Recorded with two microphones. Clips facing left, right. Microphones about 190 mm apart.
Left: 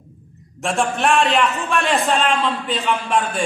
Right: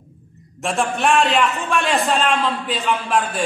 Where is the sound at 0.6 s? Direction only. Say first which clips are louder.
Left 1 dB; centre (ahead or behind).